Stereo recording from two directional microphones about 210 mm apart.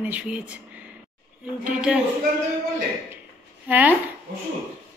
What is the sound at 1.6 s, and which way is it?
Speech, 5° right (ahead or behind).